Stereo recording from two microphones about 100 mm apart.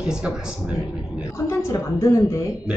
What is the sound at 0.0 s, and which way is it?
Speech, 10° right (ahead or behind).